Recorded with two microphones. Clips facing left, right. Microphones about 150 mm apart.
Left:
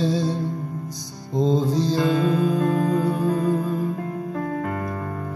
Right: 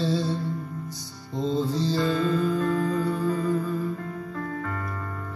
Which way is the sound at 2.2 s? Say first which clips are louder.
Left 3 dB; 60° left (ahead or behind).